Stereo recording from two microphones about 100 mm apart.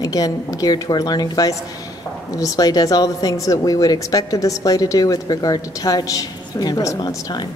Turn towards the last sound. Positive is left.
turn(degrees=45)  # may be behind; listen again after turning